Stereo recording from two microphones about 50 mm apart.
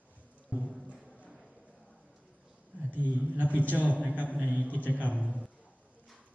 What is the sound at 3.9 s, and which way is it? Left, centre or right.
A man's voice, left.